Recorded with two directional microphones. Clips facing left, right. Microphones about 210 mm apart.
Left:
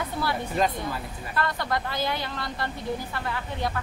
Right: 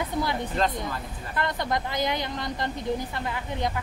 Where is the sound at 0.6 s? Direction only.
10° left (ahead or behind).